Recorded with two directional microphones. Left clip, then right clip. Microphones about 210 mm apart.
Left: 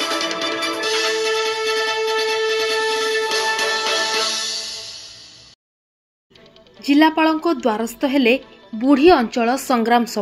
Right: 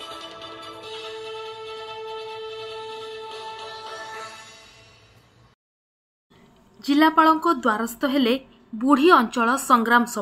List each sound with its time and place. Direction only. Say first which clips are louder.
0.0 s music: left 15 dB; 45° left (ahead or behind)
6.8 s a woman's voice: left 2 dB; 20° left (ahead or behind)